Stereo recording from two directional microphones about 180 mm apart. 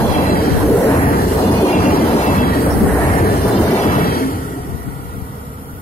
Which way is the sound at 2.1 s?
50° left (ahead or behind).